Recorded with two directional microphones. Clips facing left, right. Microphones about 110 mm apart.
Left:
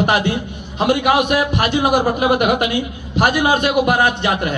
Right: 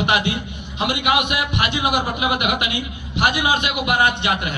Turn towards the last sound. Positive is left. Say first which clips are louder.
# left 3 dB
turn(degrees=40)  # may be behind; listen again after turning